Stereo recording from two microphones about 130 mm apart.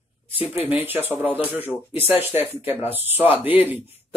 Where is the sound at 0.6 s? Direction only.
15° right (ahead or behind).